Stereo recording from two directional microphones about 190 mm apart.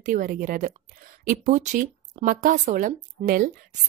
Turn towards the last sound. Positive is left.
turn(degrees=-45)  # may be behind; listen again after turning